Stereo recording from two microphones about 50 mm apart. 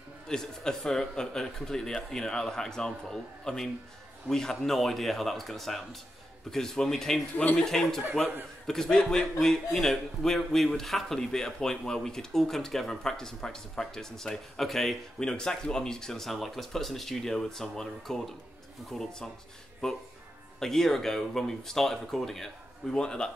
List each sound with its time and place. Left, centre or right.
0.3 s a man's voice: centre
20.5 s a man's voice: centre